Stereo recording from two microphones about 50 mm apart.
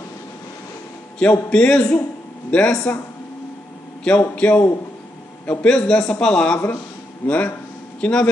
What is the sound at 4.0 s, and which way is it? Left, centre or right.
A man's voice, left.